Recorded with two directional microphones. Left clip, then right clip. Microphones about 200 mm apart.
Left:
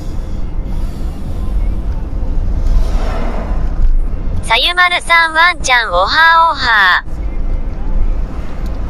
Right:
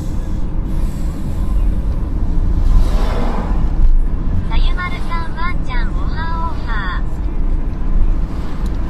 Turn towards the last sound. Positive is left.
turn(degrees=60)  # may be behind; listen again after turning